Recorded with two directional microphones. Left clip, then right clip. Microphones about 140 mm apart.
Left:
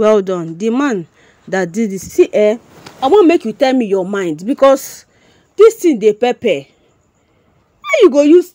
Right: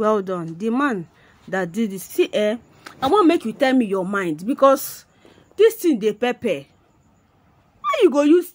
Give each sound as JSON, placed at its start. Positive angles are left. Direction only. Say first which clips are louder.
{"t": 0.0, "sound": "a woman's voice", "louder": "left 9 dB", "side_deg": 40}
{"t": 7.8, "sound": "speech", "louder": "left 7 dB", "side_deg": 30}